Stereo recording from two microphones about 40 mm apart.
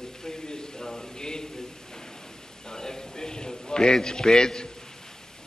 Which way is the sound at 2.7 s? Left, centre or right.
Centre.